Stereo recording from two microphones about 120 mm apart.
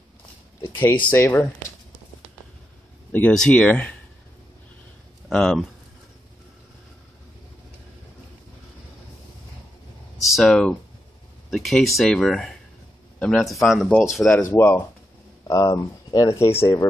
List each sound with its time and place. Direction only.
0.6 s speech: 15° left (ahead or behind)
3.1 s speech: 15° left (ahead or behind)
5.3 s a man's voice: centre (ahead or behind)
10.1 s a sound: centre (ahead or behind)
10.4 s a man's voice: 5° left (ahead or behind)
14.3 s speech: 10° left (ahead or behind)
15.4 s speech: 30° left (ahead or behind)